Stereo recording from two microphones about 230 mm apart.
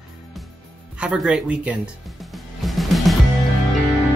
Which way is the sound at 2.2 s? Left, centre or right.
Centre.